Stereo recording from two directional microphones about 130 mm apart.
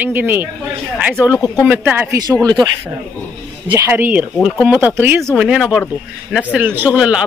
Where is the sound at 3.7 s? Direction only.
15° right (ahead or behind).